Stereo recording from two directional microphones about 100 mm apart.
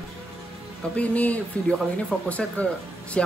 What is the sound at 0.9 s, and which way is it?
Speech, 15° left (ahead or behind).